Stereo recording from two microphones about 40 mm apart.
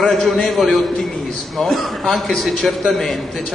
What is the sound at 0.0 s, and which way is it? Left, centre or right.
A man's voice, centre.